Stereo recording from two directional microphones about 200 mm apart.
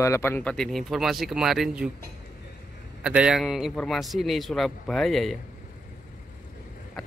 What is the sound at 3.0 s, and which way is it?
A man's voice, 5° right (ahead or behind).